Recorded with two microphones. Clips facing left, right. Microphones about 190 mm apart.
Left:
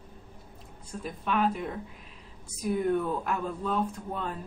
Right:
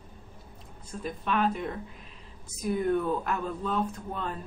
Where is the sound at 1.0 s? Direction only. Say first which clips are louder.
Even; 5° left (ahead or behind).